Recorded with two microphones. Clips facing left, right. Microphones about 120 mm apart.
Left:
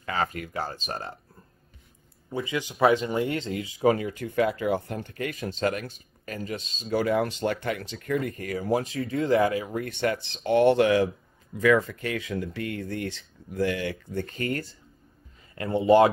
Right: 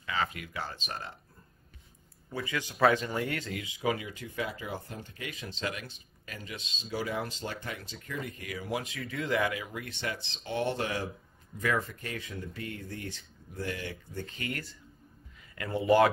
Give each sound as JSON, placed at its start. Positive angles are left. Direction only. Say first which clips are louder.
{"t": 0.0, "sound": "speech", "louder": "left 5 dB", "side_deg": 45}
{"t": 2.3, "sound": "speech", "louder": "left 5 dB", "side_deg": 20}
{"t": 3.8, "sound": "speech", "louder": "left 9 dB", "side_deg": 45}